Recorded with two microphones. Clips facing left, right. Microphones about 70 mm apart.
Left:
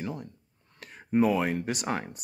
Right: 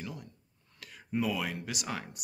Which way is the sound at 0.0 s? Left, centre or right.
Left.